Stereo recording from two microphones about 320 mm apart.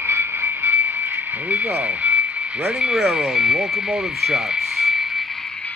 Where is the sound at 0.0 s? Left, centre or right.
Centre.